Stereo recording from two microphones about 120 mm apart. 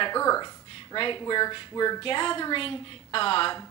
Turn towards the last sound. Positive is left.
turn(degrees=45)  # may be behind; listen again after turning